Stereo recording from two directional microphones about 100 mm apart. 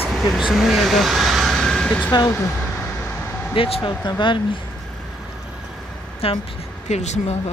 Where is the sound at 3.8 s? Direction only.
45° left (ahead or behind).